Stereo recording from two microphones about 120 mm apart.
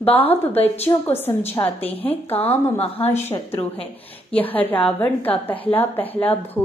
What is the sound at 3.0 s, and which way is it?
Speech, 65° left (ahead or behind).